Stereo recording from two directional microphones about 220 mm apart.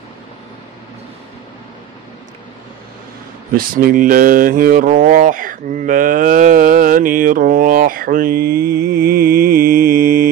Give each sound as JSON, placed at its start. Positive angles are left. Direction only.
{"t": 3.5, "sound": "speech", "side_deg": -40}